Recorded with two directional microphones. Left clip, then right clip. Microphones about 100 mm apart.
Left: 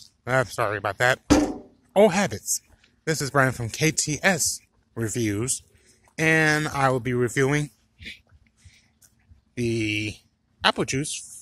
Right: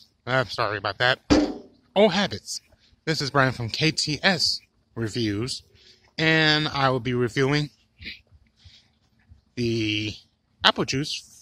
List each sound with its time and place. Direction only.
0.2 s speech: 5° left (ahead or behind)
3.1 s speech: centre (ahead or behind)
7.6 s a sound: 20° right (ahead or behind)
9.6 s speech: 5° right (ahead or behind)